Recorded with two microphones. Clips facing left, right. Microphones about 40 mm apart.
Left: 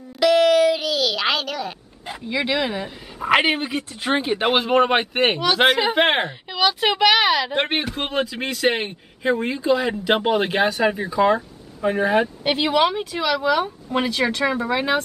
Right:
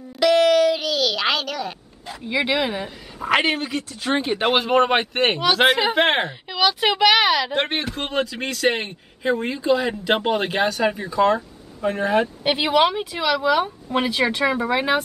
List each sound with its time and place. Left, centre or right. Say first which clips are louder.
0.2 s a sound: even; centre
2.2 s speech: right 1 dB; centre
3.2 s a man's voice: left 2 dB; centre
4.2 s a man's voice: right 1 dB; centre
12.4 s speech: right 2 dB; centre